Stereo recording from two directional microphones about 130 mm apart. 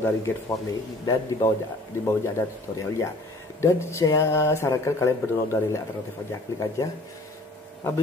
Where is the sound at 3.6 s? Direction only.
20° left (ahead or behind).